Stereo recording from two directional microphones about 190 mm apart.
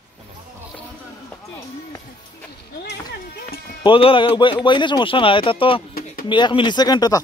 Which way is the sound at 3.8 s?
30° left (ahead or behind).